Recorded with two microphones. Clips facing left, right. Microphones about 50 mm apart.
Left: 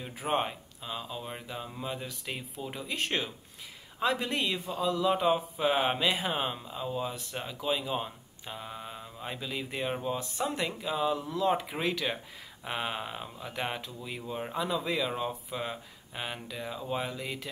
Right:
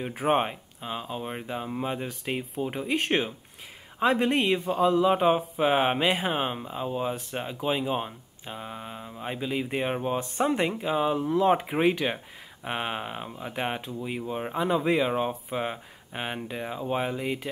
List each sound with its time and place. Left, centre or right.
0.1 s speech: right
14.7 s speech: right